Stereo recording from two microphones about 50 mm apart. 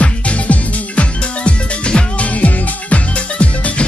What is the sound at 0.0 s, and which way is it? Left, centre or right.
Music, left.